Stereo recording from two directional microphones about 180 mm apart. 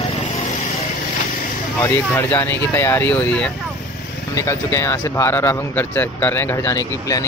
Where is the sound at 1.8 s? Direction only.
15° left (ahead or behind).